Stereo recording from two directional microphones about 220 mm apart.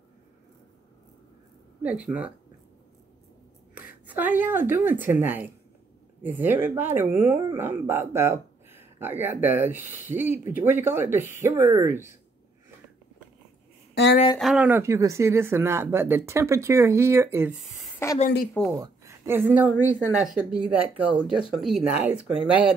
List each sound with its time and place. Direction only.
2.0 s speech: 5° right (ahead or behind)
4.1 s speech: 10° right (ahead or behind)
14.1 s speech: 25° left (ahead or behind)
14.4 s speech: 5° right (ahead or behind)
18.0 s a woman's voice: 10° left (ahead or behind)
18.8 s speech: 10° right (ahead or behind)